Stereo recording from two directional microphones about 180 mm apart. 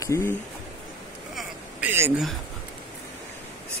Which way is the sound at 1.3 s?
5° right (ahead or behind).